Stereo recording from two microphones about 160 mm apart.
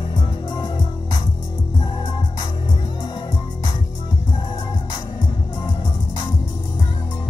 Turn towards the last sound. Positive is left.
turn(degrees=25)  # may be behind; listen again after turning